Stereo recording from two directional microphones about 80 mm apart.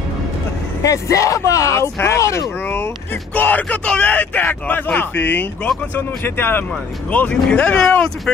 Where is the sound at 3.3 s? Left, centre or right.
Left.